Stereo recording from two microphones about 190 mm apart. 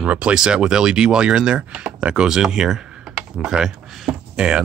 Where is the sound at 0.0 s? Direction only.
5° right (ahead or behind).